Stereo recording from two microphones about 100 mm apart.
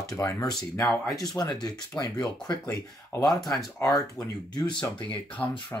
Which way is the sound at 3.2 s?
40° left (ahead or behind).